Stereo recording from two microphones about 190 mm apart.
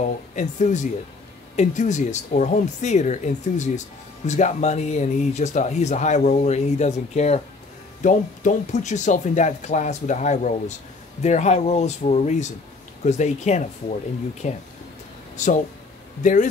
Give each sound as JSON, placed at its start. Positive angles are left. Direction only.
{"t": 0.4, "sound": "speech", "side_deg": 40}